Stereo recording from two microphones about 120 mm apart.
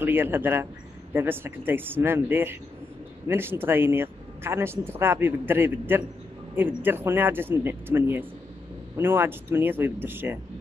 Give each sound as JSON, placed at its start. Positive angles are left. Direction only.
{"t": 0.0, "sound": "speech", "side_deg": -15}